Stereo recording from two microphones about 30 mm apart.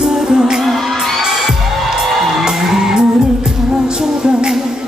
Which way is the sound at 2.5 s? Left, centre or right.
Centre.